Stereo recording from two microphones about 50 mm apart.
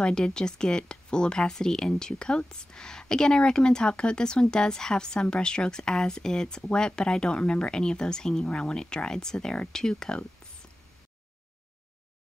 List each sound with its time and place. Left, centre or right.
0.0 s speech: centre